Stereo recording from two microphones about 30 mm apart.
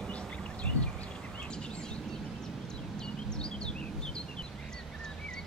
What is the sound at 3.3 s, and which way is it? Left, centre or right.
Bird vocalization, left.